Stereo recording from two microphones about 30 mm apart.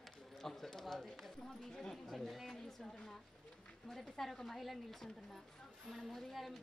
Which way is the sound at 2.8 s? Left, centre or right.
Left.